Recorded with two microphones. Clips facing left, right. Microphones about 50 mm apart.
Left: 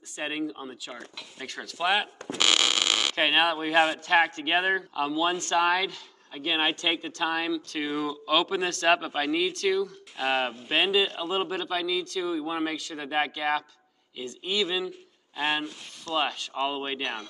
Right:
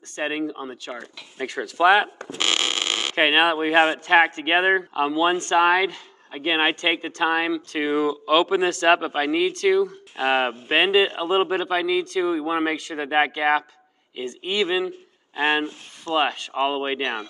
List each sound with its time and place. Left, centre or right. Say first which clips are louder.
0.2 s speech: right 5 dB; centre
1.8 s fart: right 9 dB; right
3.2 s speech: right 7 dB; right